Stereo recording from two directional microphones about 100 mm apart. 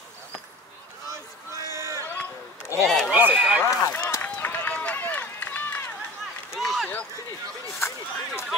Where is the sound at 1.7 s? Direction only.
30° right (ahead or behind).